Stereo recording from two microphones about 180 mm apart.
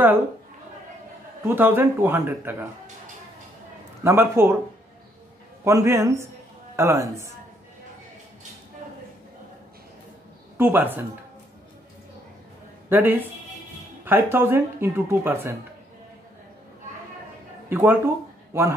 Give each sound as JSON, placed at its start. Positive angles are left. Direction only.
{"t": 1.4, "sound": "speech", "side_deg": -10}
{"t": 4.0, "sound": "speech", "side_deg": -15}
{"t": 5.6, "sound": "speech", "side_deg": -15}
{"t": 10.6, "sound": "speech", "side_deg": -10}
{"t": 12.9, "sound": "speech", "side_deg": -10}
{"t": 17.6, "sound": "speech", "side_deg": -10}